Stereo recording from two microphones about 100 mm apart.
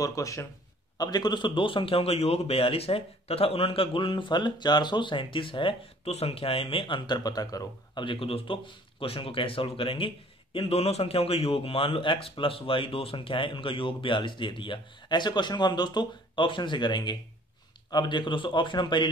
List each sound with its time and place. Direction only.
0.0 s speech: 35° left (ahead or behind)
0.9 s a man's voice: 45° left (ahead or behind)
8.0 s a man's voice: 60° left (ahead or behind)